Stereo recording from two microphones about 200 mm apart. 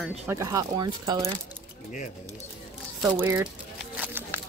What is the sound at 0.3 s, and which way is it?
Speech, 15° right (ahead or behind).